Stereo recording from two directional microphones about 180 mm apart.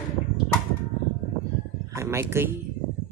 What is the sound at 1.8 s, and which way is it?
Speech, 15° right (ahead or behind).